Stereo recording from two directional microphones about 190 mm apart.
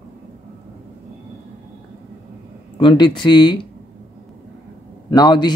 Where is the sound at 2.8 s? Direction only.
25° left (ahead or behind).